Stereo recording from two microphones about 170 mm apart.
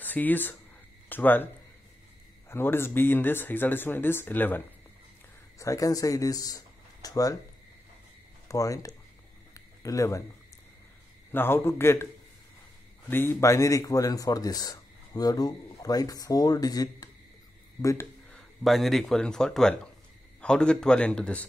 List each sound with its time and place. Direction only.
0.0 s speech: 10° left (ahead or behind)
2.5 s speech: 15° left (ahead or behind)
8.5 s speech: 20° left (ahead or behind)
9.5 s a sound: 20° left (ahead or behind)
11.3 s speech: 15° left (ahead or behind)
13.1 s speech: 10° left (ahead or behind)
17.8 s a sound: 15° left (ahead or behind)
18.6 s speech: centre (ahead or behind)